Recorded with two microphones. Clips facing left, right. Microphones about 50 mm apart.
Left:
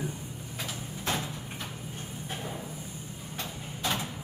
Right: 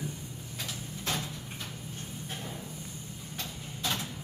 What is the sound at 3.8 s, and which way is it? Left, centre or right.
Vehicle, centre.